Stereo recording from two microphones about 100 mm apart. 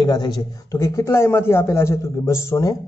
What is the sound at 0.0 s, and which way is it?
Speech, 45° left (ahead or behind).